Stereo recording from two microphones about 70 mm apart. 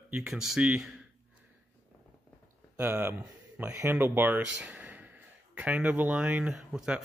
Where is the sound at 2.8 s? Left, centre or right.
Right.